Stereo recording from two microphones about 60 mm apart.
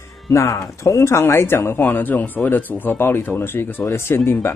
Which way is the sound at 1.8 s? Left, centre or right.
Left.